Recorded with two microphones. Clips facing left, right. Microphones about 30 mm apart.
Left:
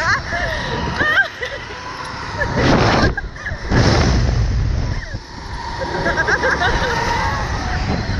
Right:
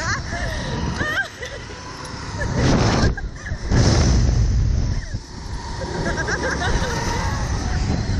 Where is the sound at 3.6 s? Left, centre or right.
Left.